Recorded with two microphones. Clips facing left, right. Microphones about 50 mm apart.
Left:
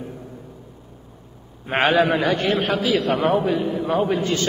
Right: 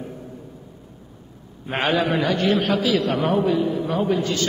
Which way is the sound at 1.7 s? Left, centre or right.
Left.